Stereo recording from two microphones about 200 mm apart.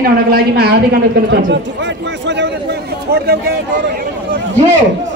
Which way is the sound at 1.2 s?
65° right (ahead or behind).